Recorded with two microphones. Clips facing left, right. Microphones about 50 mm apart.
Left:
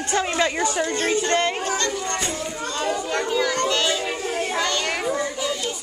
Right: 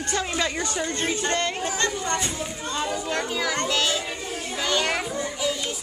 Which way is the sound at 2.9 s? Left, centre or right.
Centre.